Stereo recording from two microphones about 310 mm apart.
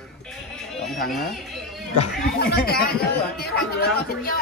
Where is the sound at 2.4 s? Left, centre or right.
Left.